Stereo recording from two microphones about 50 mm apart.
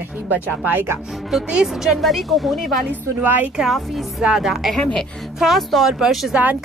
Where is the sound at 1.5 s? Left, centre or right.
Centre.